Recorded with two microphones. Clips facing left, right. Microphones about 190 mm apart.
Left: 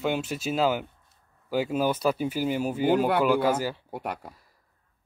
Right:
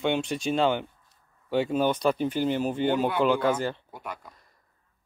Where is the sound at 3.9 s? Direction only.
70° left (ahead or behind).